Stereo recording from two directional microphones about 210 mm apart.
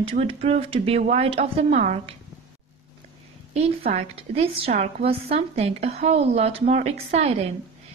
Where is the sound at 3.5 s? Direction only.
30° right (ahead or behind).